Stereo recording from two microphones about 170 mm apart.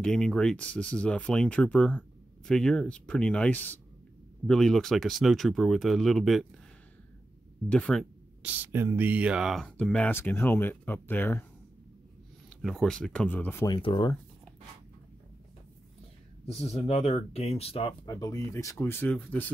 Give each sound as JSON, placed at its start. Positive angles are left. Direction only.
{"t": 0.0, "sound": "speech", "side_deg": 5}
{"t": 7.7, "sound": "speech", "side_deg": 5}
{"t": 8.4, "sound": "speech", "side_deg": -10}
{"t": 12.6, "sound": "speech", "side_deg": 5}
{"t": 13.7, "sound": "speech", "side_deg": 30}
{"t": 16.4, "sound": "speech", "side_deg": 40}